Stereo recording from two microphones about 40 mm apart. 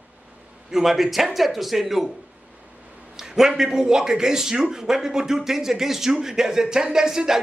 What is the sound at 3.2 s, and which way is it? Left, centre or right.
A man's voice, centre.